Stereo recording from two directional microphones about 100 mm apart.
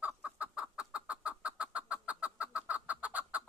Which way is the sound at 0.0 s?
15° right (ahead or behind).